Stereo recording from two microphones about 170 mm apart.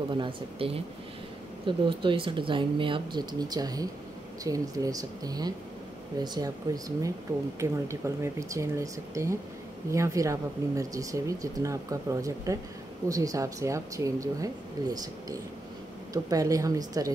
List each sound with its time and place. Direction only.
0.1 s speech: 30° right (ahead or behind)